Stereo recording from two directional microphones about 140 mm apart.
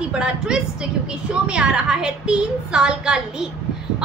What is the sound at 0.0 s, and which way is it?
A woman's voice, 5° right (ahead or behind).